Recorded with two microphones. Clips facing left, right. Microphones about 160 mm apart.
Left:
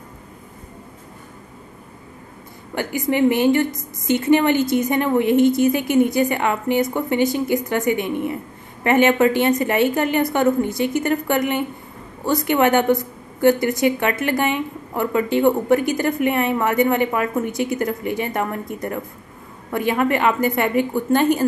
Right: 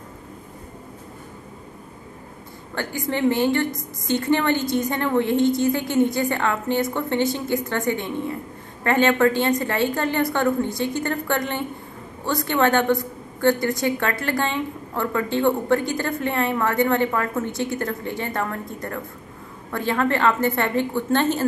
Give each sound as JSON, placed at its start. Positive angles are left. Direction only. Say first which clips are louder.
{"t": 2.7, "sound": "a woman's voice", "louder": "left 5 dB", "side_deg": 15}